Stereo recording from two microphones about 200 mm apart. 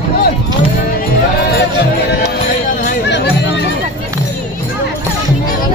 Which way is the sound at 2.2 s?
45° left (ahead or behind).